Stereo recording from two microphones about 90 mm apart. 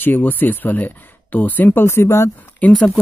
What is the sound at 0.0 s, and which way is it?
A man's voice, 20° left (ahead or behind).